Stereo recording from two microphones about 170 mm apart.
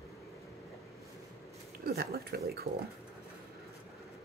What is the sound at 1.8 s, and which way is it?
Speech, 65° right (ahead or behind).